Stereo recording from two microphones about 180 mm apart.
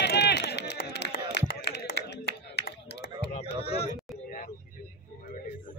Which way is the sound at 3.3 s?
35° left (ahead or behind).